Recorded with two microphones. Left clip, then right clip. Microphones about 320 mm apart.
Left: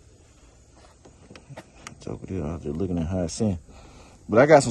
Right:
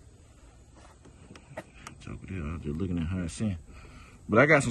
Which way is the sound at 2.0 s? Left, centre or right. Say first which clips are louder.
Left 11 dB; centre.